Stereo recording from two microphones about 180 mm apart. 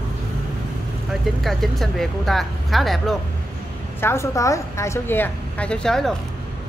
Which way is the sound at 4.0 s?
15° left (ahead or behind).